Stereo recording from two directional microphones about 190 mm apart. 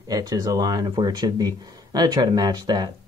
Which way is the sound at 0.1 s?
20° right (ahead or behind).